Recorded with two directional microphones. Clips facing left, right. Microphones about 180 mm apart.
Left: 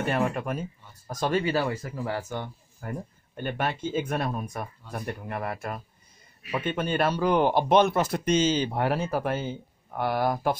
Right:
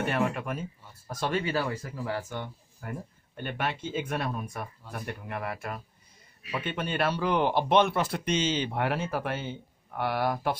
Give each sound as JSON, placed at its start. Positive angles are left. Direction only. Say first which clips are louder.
{"t": 0.1, "sound": "speech", "louder": "left 2 dB", "side_deg": 40}